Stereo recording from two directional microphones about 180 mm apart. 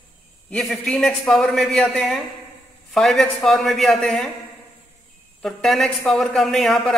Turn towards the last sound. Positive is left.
turn(degrees=0)  # may be behind; listen again after turning